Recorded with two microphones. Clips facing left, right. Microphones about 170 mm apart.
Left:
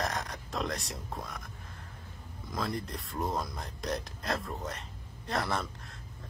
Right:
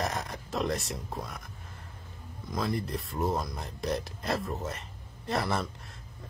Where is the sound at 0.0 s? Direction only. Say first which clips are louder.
Right 2 dB; 5° right (ahead or behind).